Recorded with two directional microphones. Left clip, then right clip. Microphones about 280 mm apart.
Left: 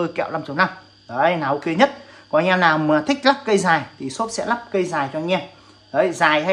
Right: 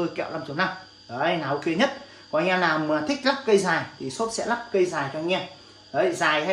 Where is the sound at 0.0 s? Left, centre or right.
Centre.